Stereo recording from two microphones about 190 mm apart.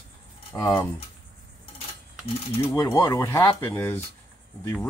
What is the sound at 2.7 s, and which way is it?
Speech, 15° left (ahead or behind).